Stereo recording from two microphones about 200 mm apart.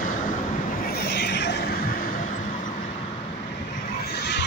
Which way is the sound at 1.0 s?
55° left (ahead or behind).